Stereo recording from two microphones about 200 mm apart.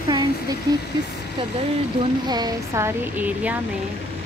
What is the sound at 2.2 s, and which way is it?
Speech, 20° right (ahead or behind).